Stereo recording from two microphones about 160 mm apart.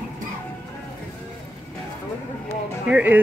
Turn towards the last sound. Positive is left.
turn(degrees=-10)  # may be behind; listen again after turning